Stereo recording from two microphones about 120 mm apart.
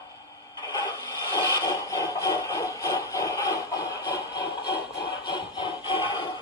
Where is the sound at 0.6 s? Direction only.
35° left (ahead or behind).